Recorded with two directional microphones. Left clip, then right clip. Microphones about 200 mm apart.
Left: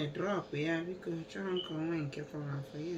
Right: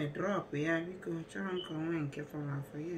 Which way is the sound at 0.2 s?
5° right (ahead or behind).